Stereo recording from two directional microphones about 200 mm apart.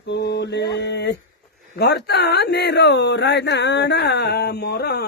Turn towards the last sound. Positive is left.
turn(degrees=50)  # may be behind; listen again after turning